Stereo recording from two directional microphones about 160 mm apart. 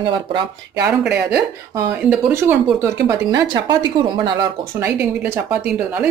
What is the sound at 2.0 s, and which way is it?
Speech, 10° right (ahead or behind).